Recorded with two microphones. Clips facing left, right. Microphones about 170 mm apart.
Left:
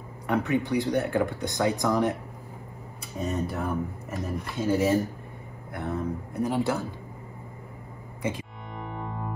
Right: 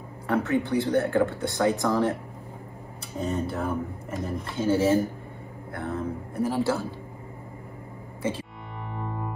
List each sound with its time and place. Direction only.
0.3 s speech: 15° left (ahead or behind)
3.2 s speech: 30° right (ahead or behind)
3.5 s speech: 5° left (ahead or behind)
4.6 s speech: 30° right (ahead or behind)
5.7 s speech: 15° left (ahead or behind)
8.2 s music: 15° left (ahead or behind)